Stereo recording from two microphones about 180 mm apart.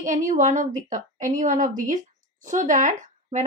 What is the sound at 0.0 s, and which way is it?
A woman's voice, 45° right (ahead or behind).